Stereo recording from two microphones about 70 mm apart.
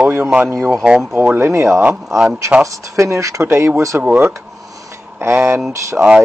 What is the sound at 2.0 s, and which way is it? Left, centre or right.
Speech, centre.